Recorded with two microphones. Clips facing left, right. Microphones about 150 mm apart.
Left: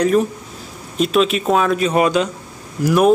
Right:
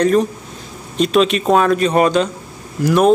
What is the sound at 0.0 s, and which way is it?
Speech, 5° left (ahead or behind).